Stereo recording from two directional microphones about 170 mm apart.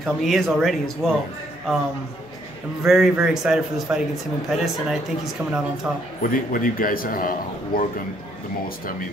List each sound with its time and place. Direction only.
0.0 s a man's voice: centre (ahead or behind)
2.8 s a man's voice: centre (ahead or behind)
6.2 s a man's voice: 55° left (ahead or behind)